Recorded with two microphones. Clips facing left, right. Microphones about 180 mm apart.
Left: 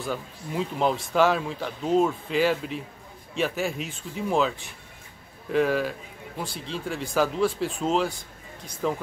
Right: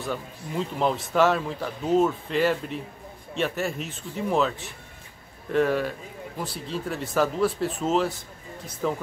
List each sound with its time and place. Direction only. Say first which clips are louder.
0.0 s speech: even; centre (ahead or behind)